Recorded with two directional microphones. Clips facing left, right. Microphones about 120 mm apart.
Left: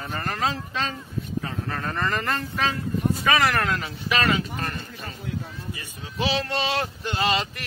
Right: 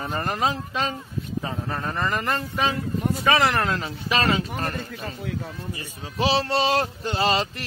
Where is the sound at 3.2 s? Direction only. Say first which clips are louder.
Right 2 dB; 25° right (ahead or behind).